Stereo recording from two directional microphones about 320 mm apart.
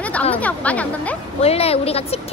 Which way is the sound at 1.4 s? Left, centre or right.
Centre.